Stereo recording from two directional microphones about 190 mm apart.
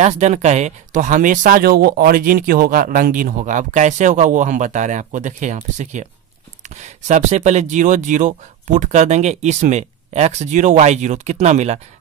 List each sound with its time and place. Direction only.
0.0 s speech: 35° right (ahead or behind)